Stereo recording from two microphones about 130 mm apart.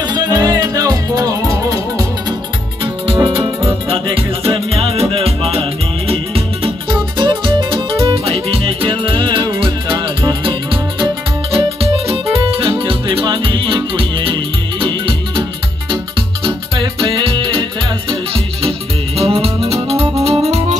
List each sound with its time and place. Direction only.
0.0 s music: 30° right (ahead or behind)
3.1 s music: 45° right (ahead or behind)
7.2 s music: 35° right (ahead or behind); by 20.7 s 55° right (ahead or behind)